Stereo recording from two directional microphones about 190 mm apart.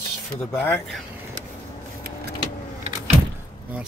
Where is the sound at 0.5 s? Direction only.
10° left (ahead or behind).